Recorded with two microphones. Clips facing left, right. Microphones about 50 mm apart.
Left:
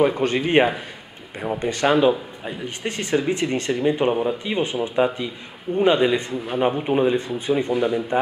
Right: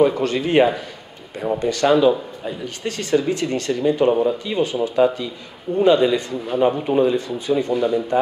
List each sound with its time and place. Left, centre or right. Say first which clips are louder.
0.2 s speech: right 1 dB; left